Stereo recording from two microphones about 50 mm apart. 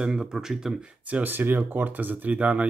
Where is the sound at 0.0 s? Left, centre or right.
Centre.